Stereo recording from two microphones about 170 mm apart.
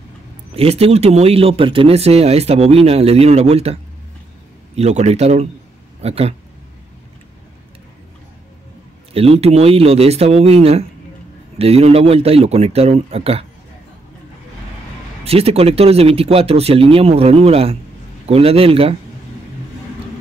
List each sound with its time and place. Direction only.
0.6 s speech: 35° right (ahead or behind)
4.7 s speech: 40° right (ahead or behind)
9.1 s speech: 35° right (ahead or behind)
15.2 s speech: 35° right (ahead or behind)